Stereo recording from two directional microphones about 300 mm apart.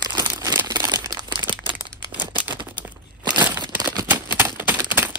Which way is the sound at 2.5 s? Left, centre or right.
Centre.